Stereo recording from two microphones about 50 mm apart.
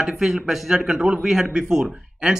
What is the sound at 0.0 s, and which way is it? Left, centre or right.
Speech, centre.